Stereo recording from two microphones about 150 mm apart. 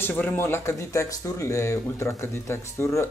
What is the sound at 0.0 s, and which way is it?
Speech, 15° left (ahead or behind).